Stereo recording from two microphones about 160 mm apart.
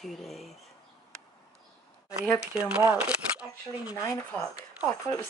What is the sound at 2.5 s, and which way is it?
Speech, 5° right (ahead or behind).